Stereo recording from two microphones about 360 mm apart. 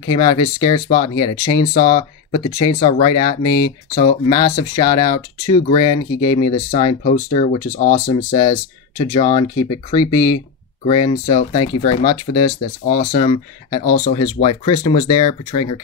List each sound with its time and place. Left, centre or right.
0.1 s speech: centre
13.8 s speech: left
14.1 s speech: centre